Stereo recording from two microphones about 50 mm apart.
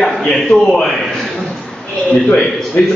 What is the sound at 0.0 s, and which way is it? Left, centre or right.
Speech, centre.